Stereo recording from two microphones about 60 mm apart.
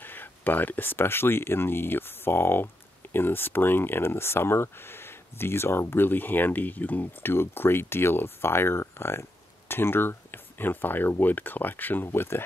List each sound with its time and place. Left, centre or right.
0.0 s speech: left